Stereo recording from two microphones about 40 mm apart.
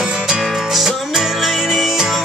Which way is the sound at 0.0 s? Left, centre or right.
Centre.